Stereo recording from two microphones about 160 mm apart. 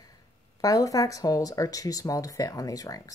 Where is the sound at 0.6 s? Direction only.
20° left (ahead or behind).